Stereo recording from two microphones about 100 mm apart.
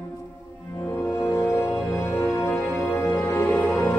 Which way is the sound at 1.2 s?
25° left (ahead or behind).